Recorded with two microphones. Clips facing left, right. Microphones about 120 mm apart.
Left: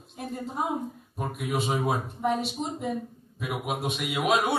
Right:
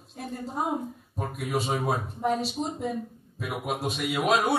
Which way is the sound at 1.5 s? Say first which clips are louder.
Even; centre (ahead or behind).